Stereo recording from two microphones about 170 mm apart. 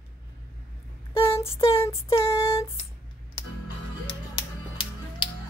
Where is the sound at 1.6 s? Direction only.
15° left (ahead or behind).